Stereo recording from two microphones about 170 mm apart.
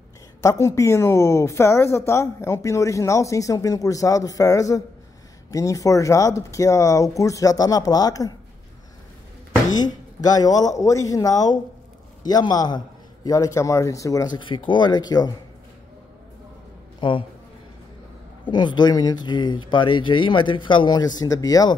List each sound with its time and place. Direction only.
0.4 s speech: 20° left (ahead or behind)
9.8 s speech: 20° left (ahead or behind)
17.0 s speech: 30° left (ahead or behind)
18.4 s speech: 25° left (ahead or behind)